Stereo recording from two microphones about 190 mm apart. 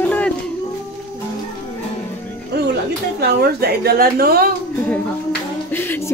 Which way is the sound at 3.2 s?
55° right (ahead or behind).